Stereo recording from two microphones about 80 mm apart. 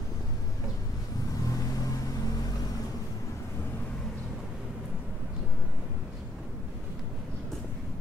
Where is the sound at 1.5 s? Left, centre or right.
Left.